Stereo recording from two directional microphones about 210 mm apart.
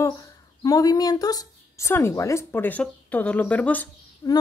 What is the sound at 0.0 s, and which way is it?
Speech, 15° left (ahead or behind).